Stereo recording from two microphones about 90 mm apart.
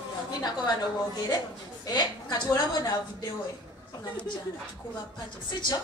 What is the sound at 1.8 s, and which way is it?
A woman's voice, 50° left (ahead or behind).